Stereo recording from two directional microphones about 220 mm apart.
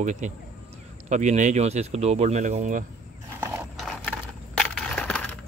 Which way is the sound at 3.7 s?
Centre (ahead or behind).